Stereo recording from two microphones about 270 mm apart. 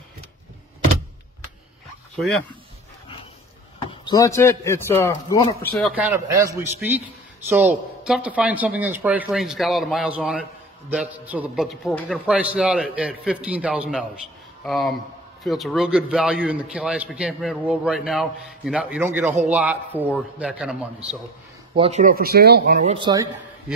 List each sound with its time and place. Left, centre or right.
2.1 s speech: centre
3.9 s a man's voice: centre
21.7 s speech: right
22.8 s speech: centre